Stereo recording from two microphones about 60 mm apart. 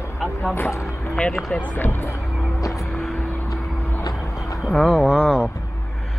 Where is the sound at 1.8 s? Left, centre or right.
Left.